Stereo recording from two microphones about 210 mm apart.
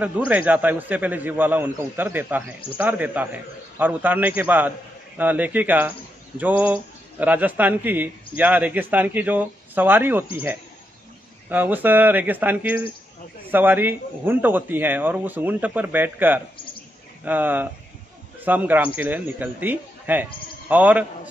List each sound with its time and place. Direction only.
0.0 s a man's voice: 5° right (ahead or behind)